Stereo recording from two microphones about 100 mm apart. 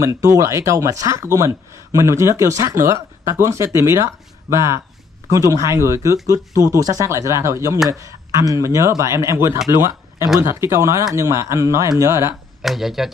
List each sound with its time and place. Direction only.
0.0 s speech: 30° right (ahead or behind)
12.6 s speech: 5° right (ahead or behind)